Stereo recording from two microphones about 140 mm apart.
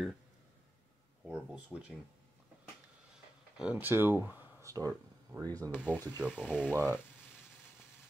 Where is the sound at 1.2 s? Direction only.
10° right (ahead or behind).